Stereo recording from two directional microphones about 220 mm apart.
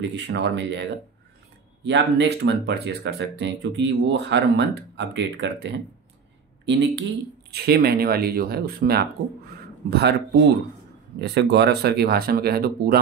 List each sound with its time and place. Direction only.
0.1 s speech: 55° right (ahead or behind)
1.9 s speech: 50° right (ahead or behind)
11.1 s speech: 50° right (ahead or behind)